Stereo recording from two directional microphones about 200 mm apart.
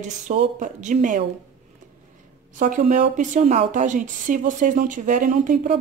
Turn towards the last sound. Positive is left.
turn(degrees=-35)  # may be behind; listen again after turning